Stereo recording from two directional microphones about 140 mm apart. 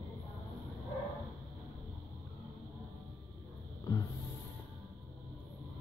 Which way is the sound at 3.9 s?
25° left (ahead or behind).